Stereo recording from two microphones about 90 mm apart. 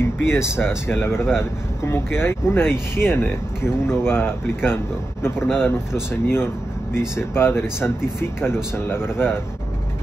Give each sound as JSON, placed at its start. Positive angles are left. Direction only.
{"t": 0.0, "sound": "speech", "side_deg": 30}